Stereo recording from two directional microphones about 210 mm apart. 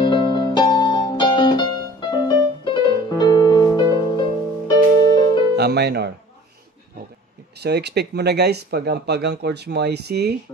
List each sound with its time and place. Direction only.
0.0 s music: 25° left (ahead or behind)
5.6 s music: 50° right (ahead or behind)
7.6 s speech: 50° right (ahead or behind)